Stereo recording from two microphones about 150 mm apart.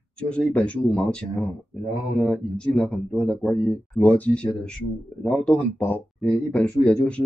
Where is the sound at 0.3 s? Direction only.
10° left (ahead or behind).